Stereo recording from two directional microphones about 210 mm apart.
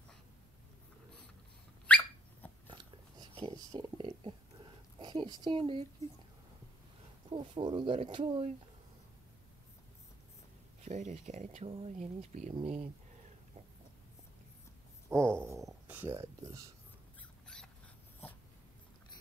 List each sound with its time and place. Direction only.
1.9 s dog: 10° left (ahead or behind)
2.7 s a sound: 25° right (ahead or behind)
4.9 s speech: 25° right (ahead or behind)
7.2 s speech: 25° right (ahead or behind)
10.8 s speech: 35° right (ahead or behind)
15.3 s a sound: 15° right (ahead or behind)